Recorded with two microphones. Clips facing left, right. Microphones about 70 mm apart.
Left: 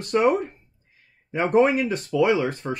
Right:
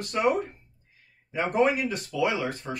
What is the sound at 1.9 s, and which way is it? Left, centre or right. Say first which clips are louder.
Speech: left 7 dB; left.